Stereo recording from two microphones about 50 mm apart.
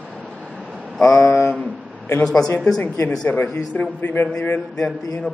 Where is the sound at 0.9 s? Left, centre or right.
Centre.